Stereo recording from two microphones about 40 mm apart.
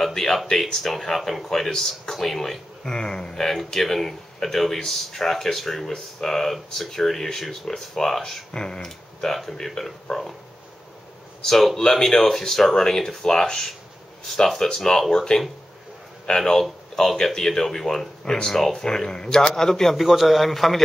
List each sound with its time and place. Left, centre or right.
0.0 s a sound: centre
0.7 s speech: centre
2.9 s speech: centre
3.4 s speech: centre
8.5 s speech: left
9.2 s speech: centre
11.4 s speech: centre
20.0 s a man's voice: centre